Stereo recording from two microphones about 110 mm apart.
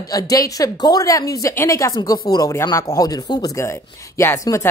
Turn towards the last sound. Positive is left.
turn(degrees=25)  # may be behind; listen again after turning